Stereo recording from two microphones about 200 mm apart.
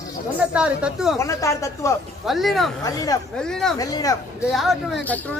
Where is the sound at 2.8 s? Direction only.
15° left (ahead or behind).